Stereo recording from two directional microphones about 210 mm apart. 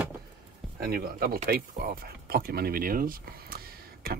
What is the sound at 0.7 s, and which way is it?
Speech, 45° right (ahead or behind).